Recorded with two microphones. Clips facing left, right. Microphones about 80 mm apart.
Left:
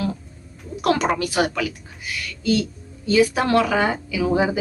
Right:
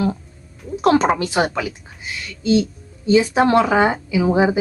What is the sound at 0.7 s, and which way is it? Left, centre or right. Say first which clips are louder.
Music: right 5 dB; right.